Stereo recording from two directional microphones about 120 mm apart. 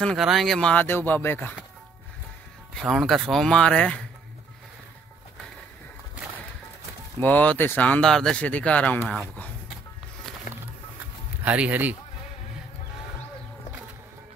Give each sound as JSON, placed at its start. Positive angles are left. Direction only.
{"t": 0.0, "sound": "speech", "side_deg": 0}
{"t": 2.7, "sound": "speech", "side_deg": 0}
{"t": 7.2, "sound": "speech", "side_deg": 15}
{"t": 11.4, "sound": "speech", "side_deg": -10}